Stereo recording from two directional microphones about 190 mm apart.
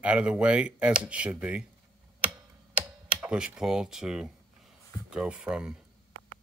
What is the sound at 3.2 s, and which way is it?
Speech, 5° right (ahead or behind).